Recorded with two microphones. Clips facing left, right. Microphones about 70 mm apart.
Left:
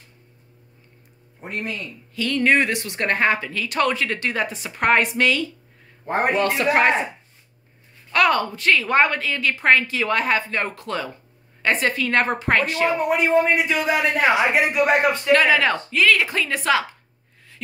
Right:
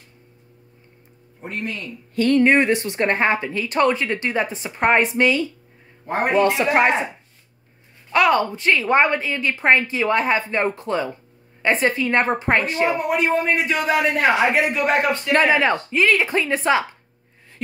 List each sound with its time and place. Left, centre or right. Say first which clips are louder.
1.4 s a man's voice: right 1 dB; centre
2.1 s a sound: right 7 dB; right
2.4 s a woman's voice: right 3 dB; right
6.6 s speech: right 1 dB; centre
8.1 s a woman's voice: right 2 dB; centre
12.8 s a man's voice: even; centre
15.3 s a woman's voice: right 1 dB; right